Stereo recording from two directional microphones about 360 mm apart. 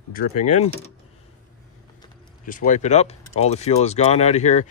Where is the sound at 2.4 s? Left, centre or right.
Left.